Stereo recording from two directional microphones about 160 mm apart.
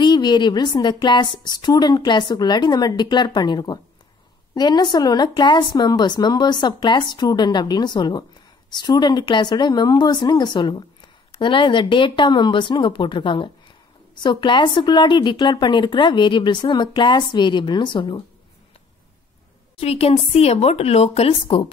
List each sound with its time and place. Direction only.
0.0 s speech: 30° left (ahead or behind)
19.8 s speech: 40° left (ahead or behind)